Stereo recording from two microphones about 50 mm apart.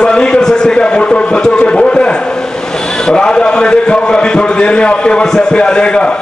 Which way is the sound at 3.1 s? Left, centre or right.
Centre.